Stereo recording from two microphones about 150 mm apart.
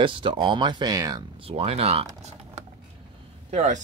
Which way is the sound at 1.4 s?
40° right (ahead or behind).